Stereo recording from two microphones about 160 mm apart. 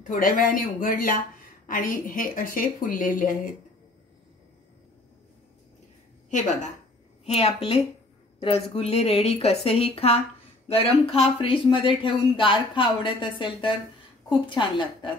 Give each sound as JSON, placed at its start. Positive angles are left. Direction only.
{"t": 0.1, "sound": "speech", "side_deg": 60}
{"t": 6.3, "sound": "a woman's voice", "side_deg": 50}